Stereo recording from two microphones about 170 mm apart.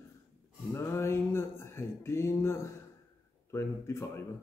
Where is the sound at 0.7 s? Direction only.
15° left (ahead or behind).